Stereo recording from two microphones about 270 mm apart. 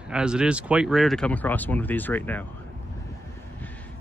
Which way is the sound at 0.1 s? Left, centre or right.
Centre.